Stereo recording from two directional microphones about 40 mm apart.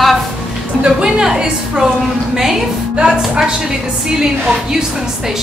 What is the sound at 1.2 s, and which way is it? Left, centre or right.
A woman's voice, centre.